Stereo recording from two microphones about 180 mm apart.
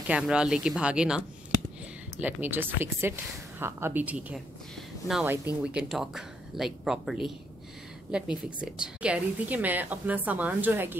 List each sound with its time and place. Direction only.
0.0 s a woman's voice: 5° right (ahead or behind)